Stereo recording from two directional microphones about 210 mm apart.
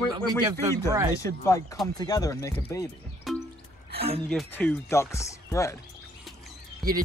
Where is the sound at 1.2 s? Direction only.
15° left (ahead or behind).